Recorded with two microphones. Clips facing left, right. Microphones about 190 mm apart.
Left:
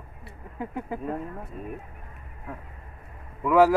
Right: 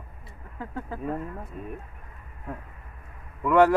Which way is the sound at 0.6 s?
15° left (ahead or behind).